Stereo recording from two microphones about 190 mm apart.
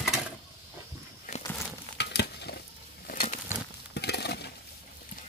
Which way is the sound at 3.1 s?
45° left (ahead or behind).